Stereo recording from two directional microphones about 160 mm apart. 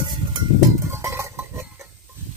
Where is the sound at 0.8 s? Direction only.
15° right (ahead or behind).